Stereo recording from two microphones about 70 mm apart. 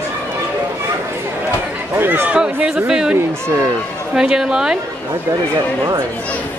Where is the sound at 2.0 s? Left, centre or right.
Right; by 3.2 s centre.